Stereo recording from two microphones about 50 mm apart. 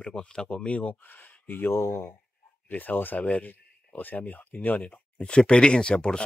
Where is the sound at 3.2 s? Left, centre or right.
Left.